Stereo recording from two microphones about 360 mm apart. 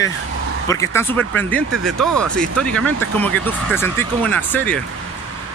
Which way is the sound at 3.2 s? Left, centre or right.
Centre.